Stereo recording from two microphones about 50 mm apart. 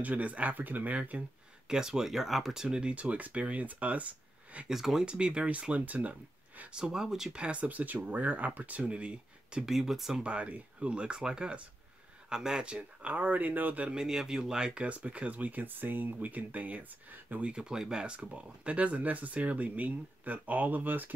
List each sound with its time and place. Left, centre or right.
0.0 s speech: right
1.7 s speech: centre
2.9 s speech: right
4.6 s speech: centre
5.0 s speech: centre
6.7 s speech: centre
7.4 s speech: right
9.7 s speech: centre
10.2 s speech: right
13.0 s speech: right
13.8 s speech: centre; by 17.4 s right
17.4 s speech: centre; by 21.1 s right